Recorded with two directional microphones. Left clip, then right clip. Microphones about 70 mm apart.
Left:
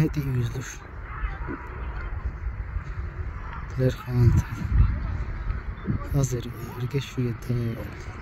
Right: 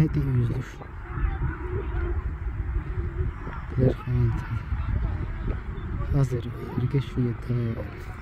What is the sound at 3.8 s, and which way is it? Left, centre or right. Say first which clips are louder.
Speech: even; left.